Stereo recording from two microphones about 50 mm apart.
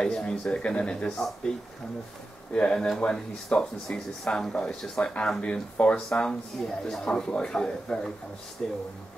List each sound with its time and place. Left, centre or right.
0.0 s speech: centre
2.5 s speech: centre